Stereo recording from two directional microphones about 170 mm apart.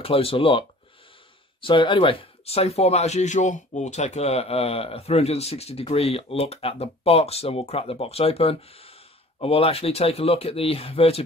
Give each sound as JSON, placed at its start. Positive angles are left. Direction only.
{"t": 0.0, "sound": "speech", "side_deg": 35}